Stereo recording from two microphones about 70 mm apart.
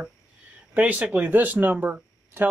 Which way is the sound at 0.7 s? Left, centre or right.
Right.